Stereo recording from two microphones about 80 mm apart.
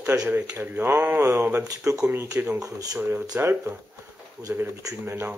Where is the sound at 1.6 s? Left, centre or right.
Right.